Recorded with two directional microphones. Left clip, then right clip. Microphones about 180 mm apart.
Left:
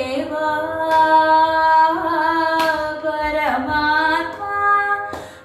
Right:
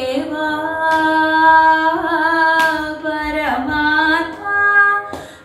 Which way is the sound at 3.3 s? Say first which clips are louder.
Even; centre (ahead or behind).